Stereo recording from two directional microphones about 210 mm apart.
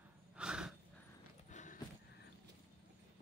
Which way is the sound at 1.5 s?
35° left (ahead or behind).